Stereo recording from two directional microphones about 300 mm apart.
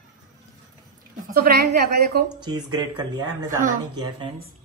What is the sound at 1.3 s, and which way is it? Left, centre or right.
Speech, right.